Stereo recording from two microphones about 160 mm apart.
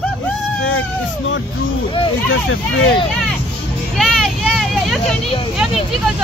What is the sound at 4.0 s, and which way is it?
Vehicle, centre (ahead or behind).